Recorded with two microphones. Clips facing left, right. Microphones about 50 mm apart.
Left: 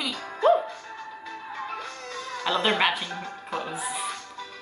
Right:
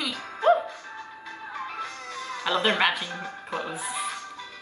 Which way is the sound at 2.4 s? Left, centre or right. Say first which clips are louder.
Even; centre.